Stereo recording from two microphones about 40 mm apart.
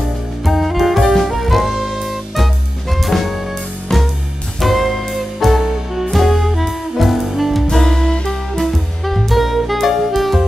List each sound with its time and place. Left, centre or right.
0.5 s saxophone: centre
3.9 s music: centre
4.6 s music: centre
7.7 s music: centre
9.0 s music: centre